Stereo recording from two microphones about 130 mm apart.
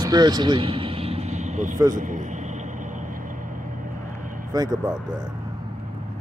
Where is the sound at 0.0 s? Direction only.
30° right (ahead or behind); by 1.8 s 65° right (ahead or behind).